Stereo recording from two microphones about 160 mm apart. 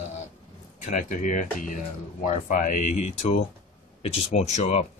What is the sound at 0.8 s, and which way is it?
Speech, 50° left (ahead or behind).